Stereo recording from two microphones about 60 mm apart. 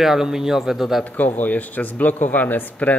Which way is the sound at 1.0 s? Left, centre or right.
Left.